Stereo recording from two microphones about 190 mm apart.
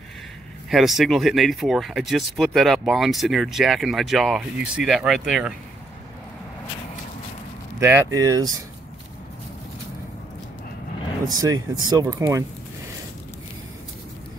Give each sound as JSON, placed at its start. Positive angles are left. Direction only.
{"t": 0.7, "sound": "speech", "side_deg": 0}
{"t": 7.8, "sound": "speech", "side_deg": -15}
{"t": 11.2, "sound": "speech", "side_deg": -20}